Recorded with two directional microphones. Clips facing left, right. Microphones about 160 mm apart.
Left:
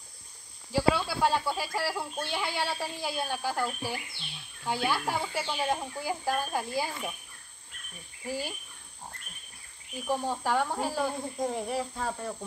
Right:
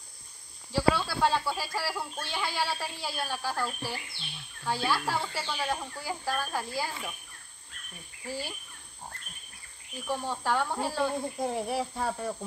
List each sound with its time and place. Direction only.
0.7 s speech: 15° left (ahead or behind)
5.2 s speech: 10° left (ahead or behind)
5.5 s speech: 20° left (ahead or behind)
8.3 s speech: 15° left (ahead or behind)
10.0 s speech: 15° left (ahead or behind)
11.4 s speech: 10° right (ahead or behind)